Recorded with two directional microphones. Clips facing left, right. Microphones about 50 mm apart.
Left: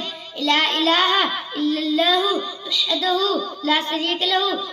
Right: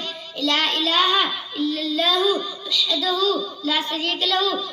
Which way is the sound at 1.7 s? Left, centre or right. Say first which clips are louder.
Left 5 dB; left.